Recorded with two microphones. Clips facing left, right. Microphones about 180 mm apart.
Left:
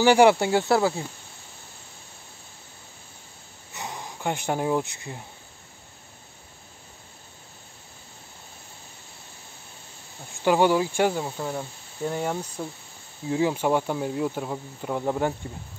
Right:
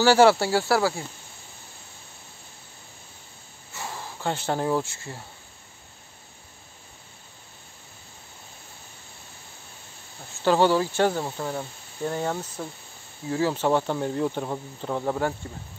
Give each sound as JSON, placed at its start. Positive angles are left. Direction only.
{"t": 0.0, "sound": "speech", "side_deg": 15}
{"t": 3.7, "sound": "speech", "side_deg": 20}
{"t": 10.4, "sound": "speech", "side_deg": 15}